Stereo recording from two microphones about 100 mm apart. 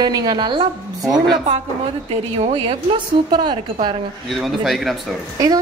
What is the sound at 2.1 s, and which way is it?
Speech, 65° right (ahead or behind).